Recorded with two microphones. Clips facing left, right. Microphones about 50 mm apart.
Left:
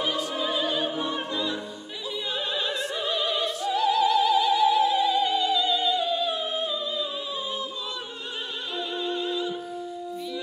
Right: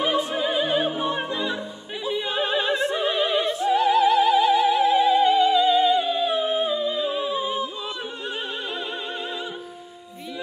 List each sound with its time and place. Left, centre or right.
0.0 s opera: right
8.7 s music: right